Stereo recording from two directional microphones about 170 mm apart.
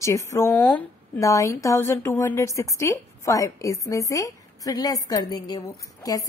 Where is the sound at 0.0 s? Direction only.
15° left (ahead or behind).